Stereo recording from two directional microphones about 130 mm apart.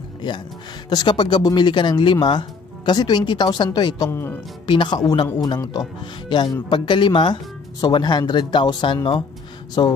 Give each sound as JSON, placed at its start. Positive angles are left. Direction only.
{"t": 0.8, "sound": "speech", "side_deg": 35}
{"t": 4.1, "sound": "speech", "side_deg": 20}
{"t": 4.6, "sound": "speech", "side_deg": 35}